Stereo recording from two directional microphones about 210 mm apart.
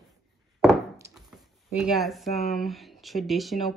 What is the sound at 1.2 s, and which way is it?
Speech, centre (ahead or behind).